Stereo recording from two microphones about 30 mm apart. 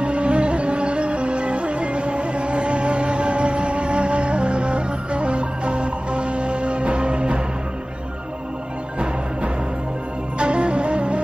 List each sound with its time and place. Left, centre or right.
0.0 s music: right
10.4 s music: right